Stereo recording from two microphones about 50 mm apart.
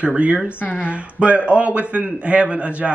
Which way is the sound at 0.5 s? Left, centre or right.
Left.